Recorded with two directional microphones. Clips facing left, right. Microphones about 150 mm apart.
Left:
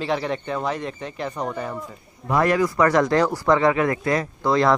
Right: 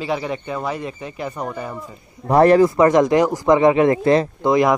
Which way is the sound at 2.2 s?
35° right (ahead or behind).